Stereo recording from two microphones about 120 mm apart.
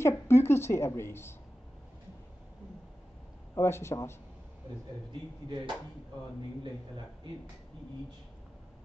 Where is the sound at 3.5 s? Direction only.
20° left (ahead or behind).